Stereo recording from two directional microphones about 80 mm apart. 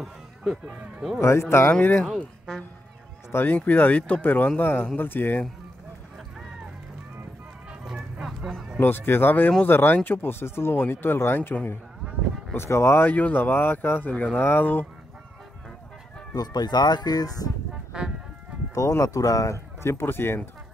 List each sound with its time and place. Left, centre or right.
0.0 s a sound: centre
1.2 s speech: left
2.1 s a woman's voice: centre
3.3 s speech: left
7.8 s music: centre
8.7 s speech: left
16.3 s speech: left
18.8 s speech: left